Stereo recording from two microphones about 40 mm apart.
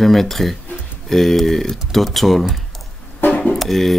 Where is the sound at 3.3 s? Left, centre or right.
Left.